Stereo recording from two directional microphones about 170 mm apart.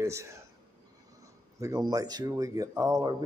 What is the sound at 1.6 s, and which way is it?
Speech, 20° right (ahead or behind).